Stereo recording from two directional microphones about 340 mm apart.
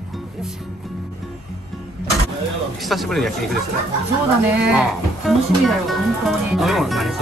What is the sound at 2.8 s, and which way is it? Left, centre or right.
Speech, centre.